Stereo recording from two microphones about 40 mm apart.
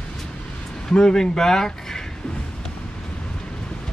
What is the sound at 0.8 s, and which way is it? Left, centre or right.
Speech, centre.